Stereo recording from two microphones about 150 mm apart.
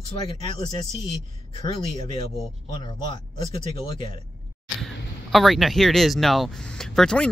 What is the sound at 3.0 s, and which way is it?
Speech, 30° left (ahead or behind).